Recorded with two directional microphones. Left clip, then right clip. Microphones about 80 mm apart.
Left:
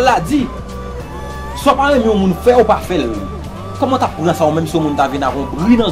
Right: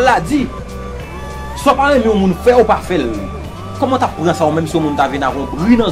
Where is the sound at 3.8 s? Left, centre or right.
Left.